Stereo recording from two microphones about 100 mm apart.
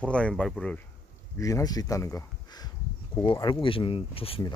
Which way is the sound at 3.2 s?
55° left (ahead or behind).